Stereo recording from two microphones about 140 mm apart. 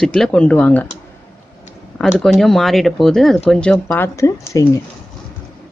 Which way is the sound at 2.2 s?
5° left (ahead or behind).